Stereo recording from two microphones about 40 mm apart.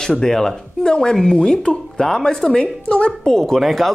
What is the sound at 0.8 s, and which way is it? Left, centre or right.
A woman's voice, centre.